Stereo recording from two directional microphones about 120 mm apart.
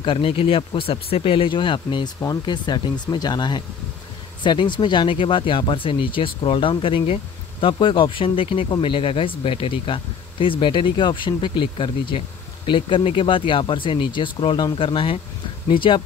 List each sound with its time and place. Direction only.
0.0 s speech: 50° left (ahead or behind)